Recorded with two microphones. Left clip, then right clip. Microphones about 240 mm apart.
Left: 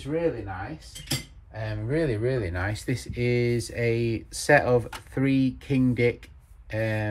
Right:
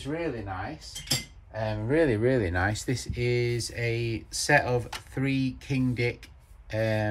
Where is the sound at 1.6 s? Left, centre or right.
Right.